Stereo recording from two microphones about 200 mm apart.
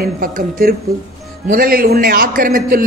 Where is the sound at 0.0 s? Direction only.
45° right (ahead or behind).